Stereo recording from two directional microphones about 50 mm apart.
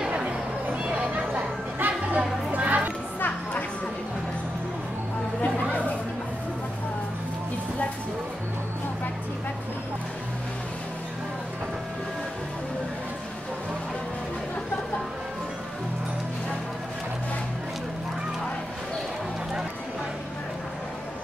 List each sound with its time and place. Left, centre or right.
0.1 s music: right
3.2 s music: left
5.4 s chatter: left